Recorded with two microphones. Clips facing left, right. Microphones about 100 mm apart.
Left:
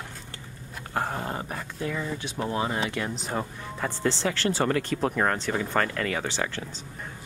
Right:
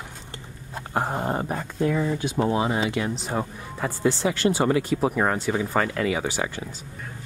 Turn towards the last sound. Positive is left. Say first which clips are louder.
# right 2 dB
turn(degrees=-10)  # may be behind; listen again after turning